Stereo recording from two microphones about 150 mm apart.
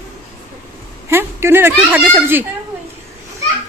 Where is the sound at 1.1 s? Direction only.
15° right (ahead or behind).